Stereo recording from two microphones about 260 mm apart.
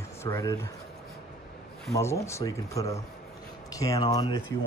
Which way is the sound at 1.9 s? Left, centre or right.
Centre.